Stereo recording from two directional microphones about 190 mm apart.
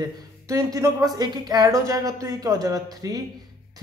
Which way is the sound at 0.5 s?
20° right (ahead or behind).